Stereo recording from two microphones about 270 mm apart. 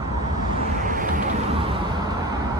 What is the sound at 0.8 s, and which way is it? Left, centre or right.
Vehicle, right.